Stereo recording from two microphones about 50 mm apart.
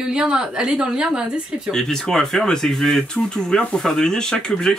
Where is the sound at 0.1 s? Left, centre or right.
Centre.